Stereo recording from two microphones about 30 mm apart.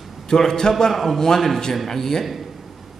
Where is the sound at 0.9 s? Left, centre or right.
Centre.